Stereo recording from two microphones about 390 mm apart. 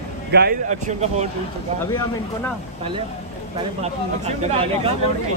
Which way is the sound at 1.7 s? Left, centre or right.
Centre.